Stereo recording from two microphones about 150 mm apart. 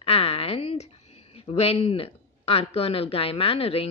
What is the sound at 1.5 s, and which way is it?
A woman's voice, 45° left (ahead or behind).